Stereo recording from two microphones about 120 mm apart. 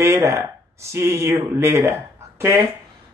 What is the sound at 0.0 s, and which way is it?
Speech, 25° right (ahead or behind).